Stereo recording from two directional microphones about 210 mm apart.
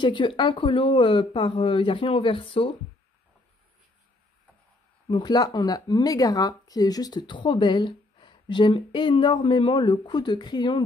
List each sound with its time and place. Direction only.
0.0 s speech: 25° left (ahead or behind)
5.1 s speech: 20° left (ahead or behind)